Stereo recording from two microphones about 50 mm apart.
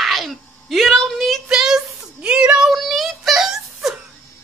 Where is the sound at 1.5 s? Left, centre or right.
Centre.